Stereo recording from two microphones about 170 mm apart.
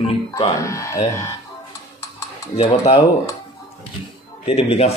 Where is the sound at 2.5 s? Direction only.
35° left (ahead or behind).